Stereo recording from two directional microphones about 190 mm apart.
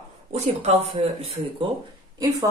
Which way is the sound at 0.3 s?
35° right (ahead or behind).